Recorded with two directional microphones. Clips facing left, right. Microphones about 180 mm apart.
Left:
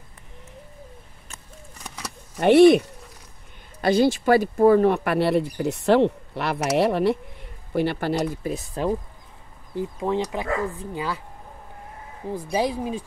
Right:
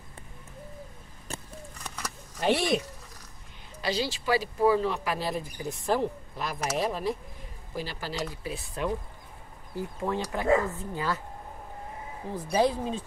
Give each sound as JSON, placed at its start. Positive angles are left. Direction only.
{"t": 1.3, "sound": "a sound", "side_deg": -30}
{"t": 2.3, "sound": "speech", "side_deg": 60}
{"t": 3.8, "sound": "speech", "side_deg": 55}
{"t": 9.8, "sound": "speech", "side_deg": 20}
{"t": 12.4, "sound": "speech", "side_deg": 10}